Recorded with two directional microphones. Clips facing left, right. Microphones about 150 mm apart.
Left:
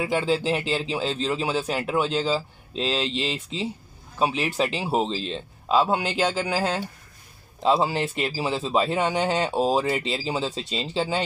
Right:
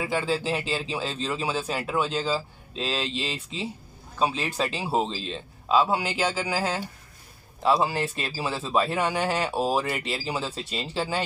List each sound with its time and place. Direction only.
0.0 s a man's voice: 20° left (ahead or behind)
7.6 s a man's voice: 20° left (ahead or behind)